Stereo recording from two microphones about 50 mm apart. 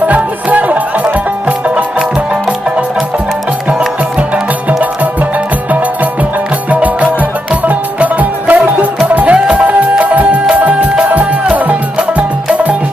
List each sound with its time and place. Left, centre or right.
0.0 s music: right
6.7 s music: right